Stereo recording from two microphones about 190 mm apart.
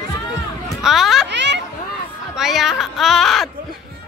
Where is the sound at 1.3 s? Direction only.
65° right (ahead or behind).